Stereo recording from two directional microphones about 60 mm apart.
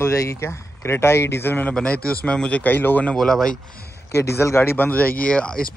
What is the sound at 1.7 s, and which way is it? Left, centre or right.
Speech, left.